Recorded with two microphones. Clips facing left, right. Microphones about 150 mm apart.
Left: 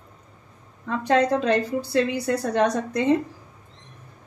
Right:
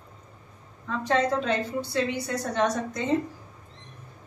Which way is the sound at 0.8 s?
80° left.